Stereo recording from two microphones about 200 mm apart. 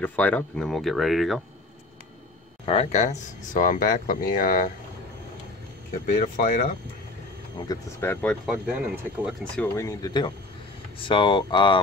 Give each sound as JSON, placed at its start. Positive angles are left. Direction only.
{"t": 0.0, "sound": "speech", "side_deg": 10}
{"t": 2.6, "sound": "speech", "side_deg": 30}
{"t": 6.0, "sound": "speech", "side_deg": 40}
{"t": 7.5, "sound": "speech", "side_deg": 20}
{"t": 8.5, "sound": "speech", "side_deg": -10}
{"t": 9.4, "sound": "speech", "side_deg": 10}